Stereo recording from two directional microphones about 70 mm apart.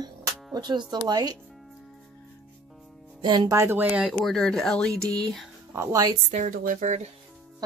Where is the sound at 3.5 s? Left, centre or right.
Right.